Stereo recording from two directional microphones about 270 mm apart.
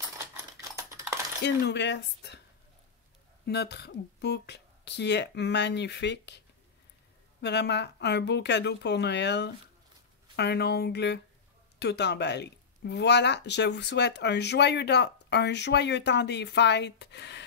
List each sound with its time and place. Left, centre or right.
0.7 s coin: centre
1.4 s speech: left
3.4 s speech: left
7.4 s speech: left